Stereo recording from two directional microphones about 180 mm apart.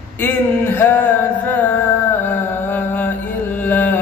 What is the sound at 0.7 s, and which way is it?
Music, 10° left (ahead or behind).